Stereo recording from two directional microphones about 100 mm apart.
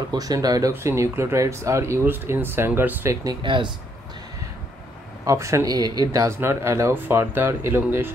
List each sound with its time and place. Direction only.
0.1 s speech: 40° right (ahead or behind); by 3.1 s 20° right (ahead or behind)
3.4 s speech: 55° right (ahead or behind)
5.2 s speech: 30° right (ahead or behind)
6.2 s speech: 25° right (ahead or behind)